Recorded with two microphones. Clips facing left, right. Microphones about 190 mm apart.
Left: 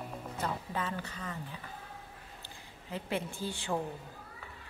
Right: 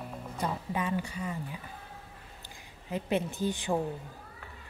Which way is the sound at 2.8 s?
20° right (ahead or behind).